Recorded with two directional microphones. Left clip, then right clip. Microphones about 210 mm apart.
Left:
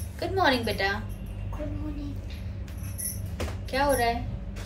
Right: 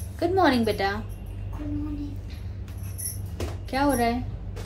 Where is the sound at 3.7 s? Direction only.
35° right (ahead or behind).